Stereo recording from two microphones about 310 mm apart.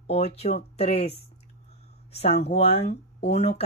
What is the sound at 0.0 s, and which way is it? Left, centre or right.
Speech, centre.